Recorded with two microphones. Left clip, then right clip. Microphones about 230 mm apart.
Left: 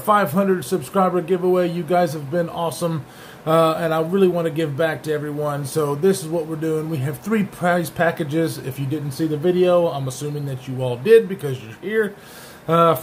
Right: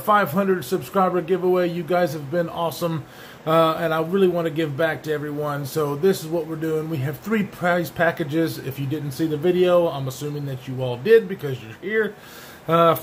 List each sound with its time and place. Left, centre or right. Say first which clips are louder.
0.0 s a man's voice: left 1 dB; centre